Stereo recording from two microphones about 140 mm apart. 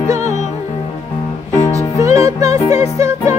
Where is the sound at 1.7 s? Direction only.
25° right (ahead or behind).